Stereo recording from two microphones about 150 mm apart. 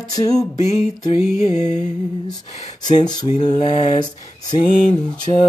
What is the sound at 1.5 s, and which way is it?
Mantra, 50° left (ahead or behind).